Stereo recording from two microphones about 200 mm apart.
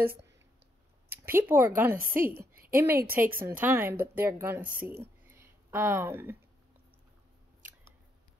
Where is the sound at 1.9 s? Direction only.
45° right (ahead or behind).